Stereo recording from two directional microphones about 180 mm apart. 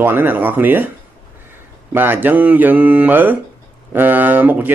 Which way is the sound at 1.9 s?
10° right (ahead or behind).